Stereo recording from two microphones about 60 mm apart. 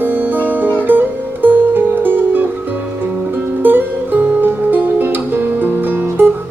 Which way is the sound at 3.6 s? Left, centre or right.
Right.